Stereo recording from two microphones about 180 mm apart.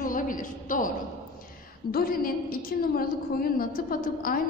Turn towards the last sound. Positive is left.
turn(degrees=50)  # may be behind; listen again after turning